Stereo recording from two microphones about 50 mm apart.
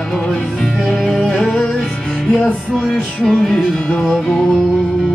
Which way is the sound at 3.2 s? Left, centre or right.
Centre.